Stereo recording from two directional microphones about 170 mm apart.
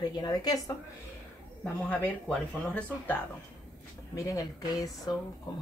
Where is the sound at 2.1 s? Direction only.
10° left (ahead or behind).